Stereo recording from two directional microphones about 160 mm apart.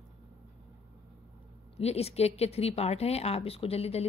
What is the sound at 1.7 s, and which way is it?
Speech, 40° left (ahead or behind).